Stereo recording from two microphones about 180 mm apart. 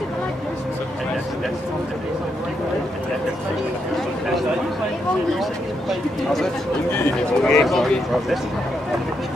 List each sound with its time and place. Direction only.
5.4 s speech: centre (ahead or behind)
7.4 s speech: centre (ahead or behind)